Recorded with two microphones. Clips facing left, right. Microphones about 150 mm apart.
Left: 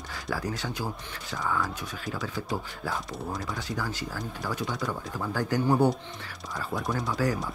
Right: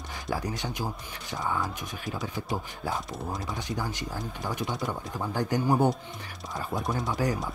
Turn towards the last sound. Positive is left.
turn(degrees=-20)  # may be behind; listen again after turning